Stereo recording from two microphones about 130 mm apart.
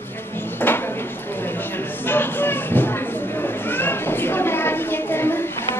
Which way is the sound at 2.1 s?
15° left (ahead or behind).